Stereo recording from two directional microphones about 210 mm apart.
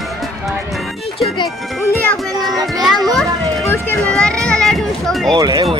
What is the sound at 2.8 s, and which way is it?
Children playing, centre (ahead or behind).